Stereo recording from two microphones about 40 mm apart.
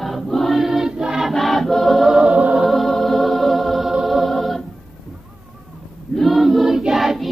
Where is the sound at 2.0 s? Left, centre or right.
Centre.